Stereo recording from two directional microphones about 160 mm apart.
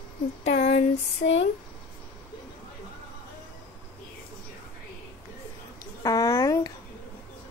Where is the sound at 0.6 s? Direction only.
45° left (ahead or behind).